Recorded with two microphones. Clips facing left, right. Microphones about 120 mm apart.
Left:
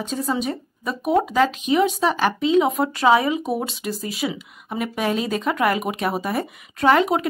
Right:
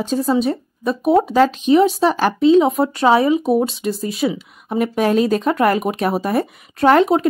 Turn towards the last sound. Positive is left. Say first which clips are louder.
# right 4 dB
turn(degrees=-40)  # may be behind; listen again after turning